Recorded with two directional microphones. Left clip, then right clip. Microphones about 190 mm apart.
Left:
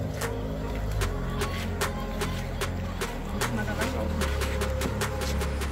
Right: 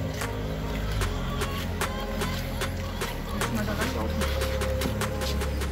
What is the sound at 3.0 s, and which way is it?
Music, centre (ahead or behind).